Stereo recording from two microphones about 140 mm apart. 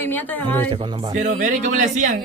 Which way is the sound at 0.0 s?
15° left (ahead or behind).